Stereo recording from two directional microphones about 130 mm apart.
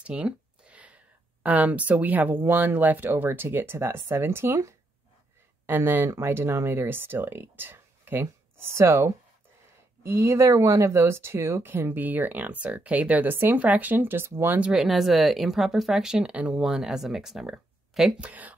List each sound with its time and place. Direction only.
0.0 s speech: 10° right (ahead or behind)